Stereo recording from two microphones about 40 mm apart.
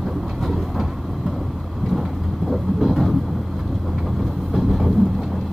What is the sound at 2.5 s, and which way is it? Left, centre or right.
Train, centre.